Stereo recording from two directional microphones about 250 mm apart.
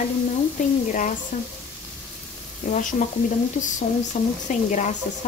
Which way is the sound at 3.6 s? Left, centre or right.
Left.